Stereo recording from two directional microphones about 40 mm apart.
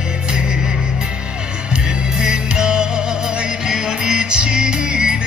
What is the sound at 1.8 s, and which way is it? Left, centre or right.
Music, right.